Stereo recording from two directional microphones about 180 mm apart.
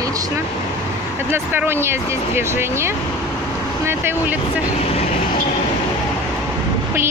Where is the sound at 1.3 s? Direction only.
10° right (ahead or behind).